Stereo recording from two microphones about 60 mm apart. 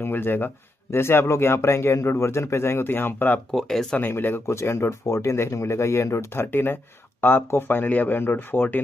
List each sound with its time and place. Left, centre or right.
0.0 s speech: left
3.5 s speech: centre
4.0 s speech: left
4.5 s speech: left
6.4 s speech: left